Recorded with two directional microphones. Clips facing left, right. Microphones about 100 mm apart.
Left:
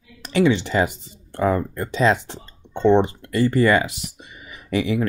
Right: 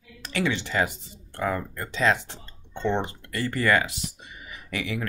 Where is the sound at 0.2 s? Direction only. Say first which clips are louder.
Left 9 dB; 20° left (ahead or behind).